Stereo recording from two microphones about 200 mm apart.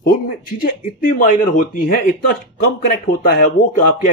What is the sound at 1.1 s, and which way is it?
Speech, 40° left (ahead or behind).